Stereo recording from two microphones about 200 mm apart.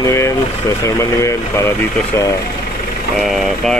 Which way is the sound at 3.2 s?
Centre (ahead or behind).